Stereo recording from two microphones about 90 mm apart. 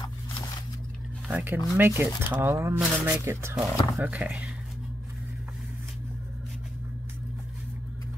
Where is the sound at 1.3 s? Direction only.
20° right (ahead or behind).